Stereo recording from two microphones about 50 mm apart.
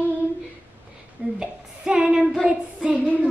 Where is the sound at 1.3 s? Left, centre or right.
Centre.